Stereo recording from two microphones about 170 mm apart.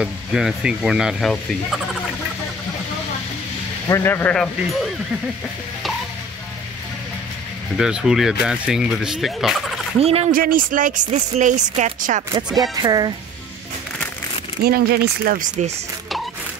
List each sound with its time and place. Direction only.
0.0 s speech: 5° right (ahead or behind)
3.9 s speech: 15° left (ahead or behind)
7.7 s speech: 5° right (ahead or behind)
9.9 s speech: 35° right (ahead or behind)
10.3 s speech: 55° right (ahead or behind)
12.7 s speech: 25° right (ahead or behind)
14.6 s speech: 65° right (ahead or behind)